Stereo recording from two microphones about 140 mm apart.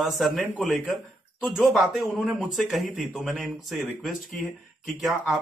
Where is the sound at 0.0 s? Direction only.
Centre (ahead or behind).